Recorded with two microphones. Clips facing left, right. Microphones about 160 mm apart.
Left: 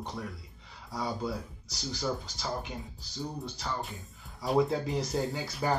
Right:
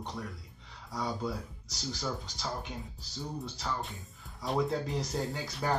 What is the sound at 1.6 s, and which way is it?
Speech, centre (ahead or behind).